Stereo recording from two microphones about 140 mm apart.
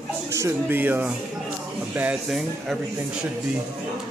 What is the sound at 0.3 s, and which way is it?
Speech, 20° right (ahead or behind).